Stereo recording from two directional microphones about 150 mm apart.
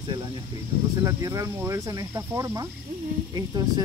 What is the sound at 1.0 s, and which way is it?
Speech, 20° right (ahead or behind).